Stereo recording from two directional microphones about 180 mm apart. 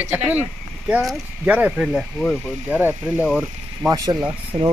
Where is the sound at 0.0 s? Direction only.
10° right (ahead or behind).